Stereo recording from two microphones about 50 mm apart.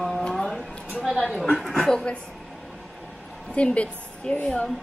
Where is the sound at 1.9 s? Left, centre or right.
Left.